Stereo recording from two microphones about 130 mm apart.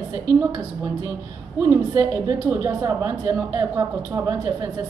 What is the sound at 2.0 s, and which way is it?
A woman's voice, 25° right (ahead or behind).